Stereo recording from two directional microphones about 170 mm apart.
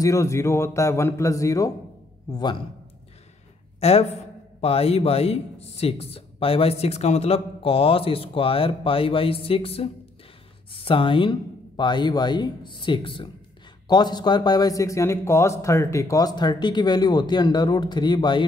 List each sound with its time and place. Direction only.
0.0 s speech: 15° left (ahead or behind)
3.8 s speech: 40° left (ahead or behind)